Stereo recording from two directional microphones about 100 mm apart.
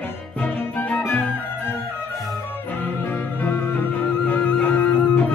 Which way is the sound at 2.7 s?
20° left (ahead or behind).